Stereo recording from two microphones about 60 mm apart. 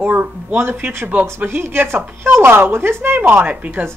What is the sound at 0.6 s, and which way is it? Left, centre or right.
A woman's voice, right.